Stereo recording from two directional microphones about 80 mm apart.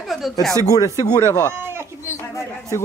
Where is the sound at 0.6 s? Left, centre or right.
Left.